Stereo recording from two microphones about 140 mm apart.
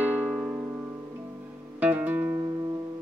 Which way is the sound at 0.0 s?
10° right (ahead or behind).